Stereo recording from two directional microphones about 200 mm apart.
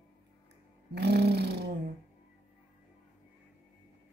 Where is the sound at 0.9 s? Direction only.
55° right (ahead or behind).